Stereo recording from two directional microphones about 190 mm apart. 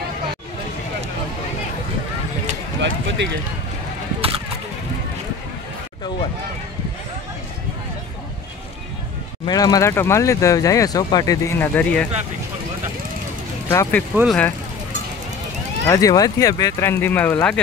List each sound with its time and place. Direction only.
2.8 s speech: 70° right (ahead or behind)
4.2 s a sound: 30° right (ahead or behind)
9.5 s speech: 20° left (ahead or behind)
13.7 s speech: 10° left (ahead or behind)
14.1 s speech: centre (ahead or behind)
15.9 s speech: 20° left (ahead or behind)